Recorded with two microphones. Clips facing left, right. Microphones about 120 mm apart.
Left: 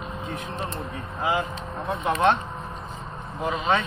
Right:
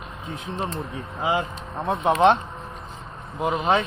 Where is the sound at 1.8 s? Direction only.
25° right (ahead or behind).